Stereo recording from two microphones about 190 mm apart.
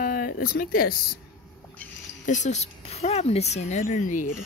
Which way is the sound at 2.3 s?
40° left (ahead or behind).